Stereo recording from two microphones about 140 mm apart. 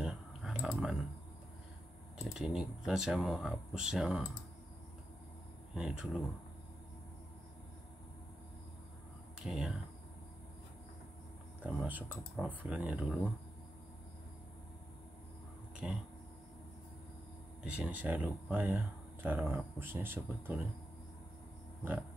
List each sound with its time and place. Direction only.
0.0 s clicking: 5° right (ahead or behind)
2.3 s speech: 5° right (ahead or behind)
5.8 s speech: 5° right (ahead or behind)
9.4 s speech: 5° right (ahead or behind)
11.6 s speech: 10° right (ahead or behind)
15.7 s a sound: 5° right (ahead or behind)
17.6 s speech: 10° right (ahead or behind)